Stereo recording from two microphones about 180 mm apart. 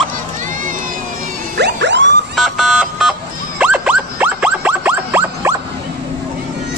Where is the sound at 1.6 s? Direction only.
80° right.